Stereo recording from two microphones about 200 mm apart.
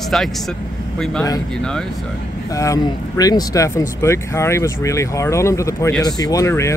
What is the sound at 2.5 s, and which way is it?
Speech, 15° left (ahead or behind).